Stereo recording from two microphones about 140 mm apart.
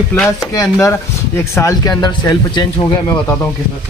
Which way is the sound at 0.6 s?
20° left (ahead or behind).